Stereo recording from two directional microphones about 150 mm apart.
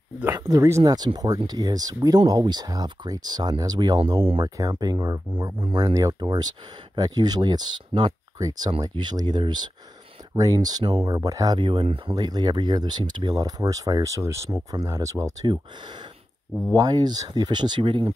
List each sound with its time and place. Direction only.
0.4 s speech: 20° right (ahead or behind)